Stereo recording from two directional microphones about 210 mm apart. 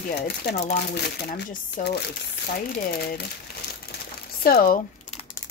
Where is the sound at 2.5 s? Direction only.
40° left (ahead or behind).